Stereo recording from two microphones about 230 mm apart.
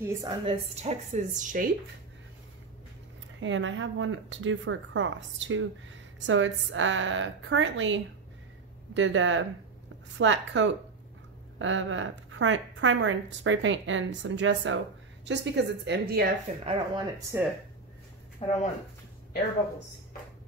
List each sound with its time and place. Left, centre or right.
0.0 s speech: centre
0.8 s speech: right
3.3 s a woman's voice: right
16.6 s speech: centre
18.4 s speech: left